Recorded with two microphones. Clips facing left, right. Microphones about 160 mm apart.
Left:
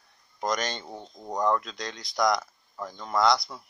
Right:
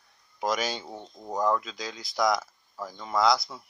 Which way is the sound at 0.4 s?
5° right (ahead or behind).